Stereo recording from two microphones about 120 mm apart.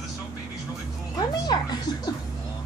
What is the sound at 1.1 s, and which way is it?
Speech, 35° left (ahead or behind).